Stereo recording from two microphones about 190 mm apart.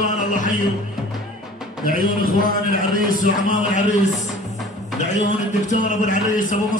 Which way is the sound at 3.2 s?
45° left (ahead or behind).